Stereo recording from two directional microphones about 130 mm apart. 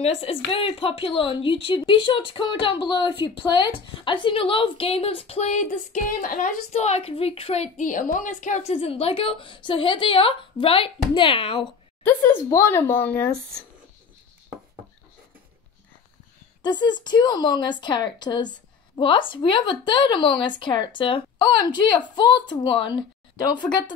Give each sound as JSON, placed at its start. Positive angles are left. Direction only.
{"t": 0.0, "sound": "speech", "side_deg": 50}
{"t": 6.7, "sound": "speech", "side_deg": 55}
{"t": 12.0, "sound": "speech", "side_deg": 15}
{"t": 16.6, "sound": "a woman's voice", "side_deg": 35}